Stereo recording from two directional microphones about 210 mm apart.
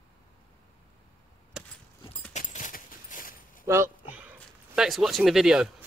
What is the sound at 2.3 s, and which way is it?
Keys jangling, 35° left (ahead or behind).